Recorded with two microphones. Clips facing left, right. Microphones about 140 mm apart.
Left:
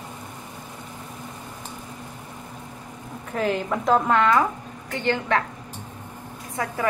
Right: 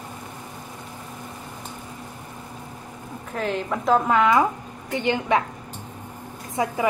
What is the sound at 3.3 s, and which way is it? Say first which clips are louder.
Speech: left 2 dB; centre (ahead or behind).